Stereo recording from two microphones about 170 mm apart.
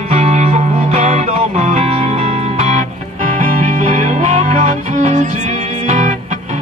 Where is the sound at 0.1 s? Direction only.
40° right (ahead or behind).